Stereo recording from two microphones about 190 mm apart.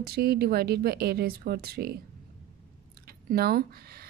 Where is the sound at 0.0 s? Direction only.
55° right (ahead or behind).